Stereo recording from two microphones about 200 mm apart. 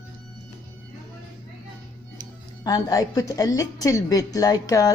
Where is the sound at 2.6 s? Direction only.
20° left (ahead or behind).